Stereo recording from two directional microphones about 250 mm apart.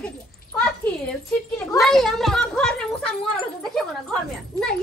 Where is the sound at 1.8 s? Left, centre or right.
Centre.